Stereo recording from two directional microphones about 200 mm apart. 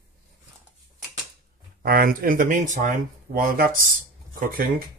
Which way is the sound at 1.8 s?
45° right (ahead or behind).